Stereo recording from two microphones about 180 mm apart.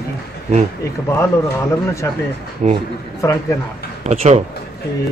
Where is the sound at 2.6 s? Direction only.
40° right (ahead or behind).